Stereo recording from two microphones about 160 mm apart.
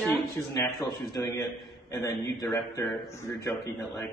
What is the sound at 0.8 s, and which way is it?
A man's voice, 25° left (ahead or behind).